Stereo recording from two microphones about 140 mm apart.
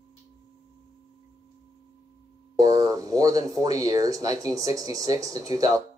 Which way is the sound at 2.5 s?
25° right (ahead or behind).